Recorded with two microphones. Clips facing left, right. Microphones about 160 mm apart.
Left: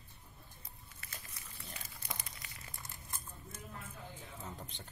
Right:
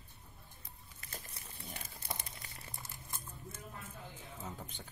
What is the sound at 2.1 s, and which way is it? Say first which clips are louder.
Crumpling: right 2 dB; 30° right (ahead or behind).